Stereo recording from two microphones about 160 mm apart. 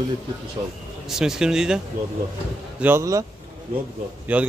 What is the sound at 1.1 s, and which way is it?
Speech, 5° right (ahead or behind).